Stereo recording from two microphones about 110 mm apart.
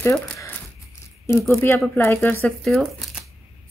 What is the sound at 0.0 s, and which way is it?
Speech, 30° left (ahead or behind).